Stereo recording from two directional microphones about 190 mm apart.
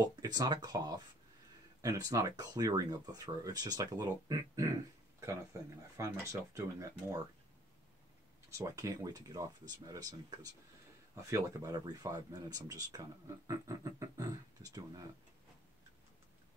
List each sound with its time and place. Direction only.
0.0 s speech: 20° right (ahead or behind)
8.5 s speech: 15° right (ahead or behind)